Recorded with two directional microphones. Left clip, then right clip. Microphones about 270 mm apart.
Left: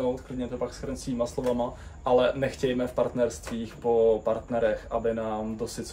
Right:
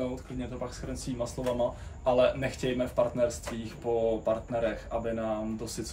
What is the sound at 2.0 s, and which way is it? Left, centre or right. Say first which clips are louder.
Speech: left 2 dB; centre.